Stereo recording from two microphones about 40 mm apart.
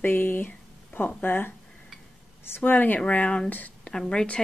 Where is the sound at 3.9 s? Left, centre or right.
Centre.